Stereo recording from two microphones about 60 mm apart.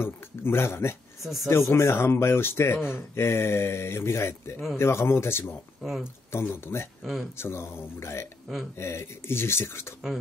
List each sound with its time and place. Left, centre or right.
0.0 s speech: left
1.2 s speech: centre
1.5 s speech: left
5.8 s speech: centre
6.3 s speech: left
7.0 s speech: centre
7.3 s speech: left